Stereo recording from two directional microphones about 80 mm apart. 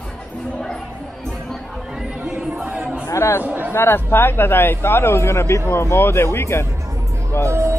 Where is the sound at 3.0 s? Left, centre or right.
Left.